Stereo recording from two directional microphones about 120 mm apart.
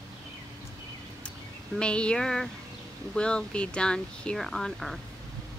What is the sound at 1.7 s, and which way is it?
Speech, 10° left (ahead or behind).